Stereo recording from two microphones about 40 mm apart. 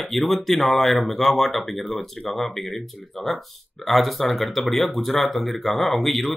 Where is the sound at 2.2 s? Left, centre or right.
Centre.